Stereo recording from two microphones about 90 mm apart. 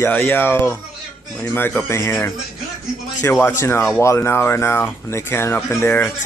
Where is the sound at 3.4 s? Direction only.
30° left (ahead or behind).